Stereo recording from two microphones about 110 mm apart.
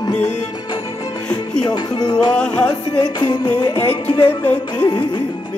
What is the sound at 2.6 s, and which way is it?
Music, 40° left (ahead or behind).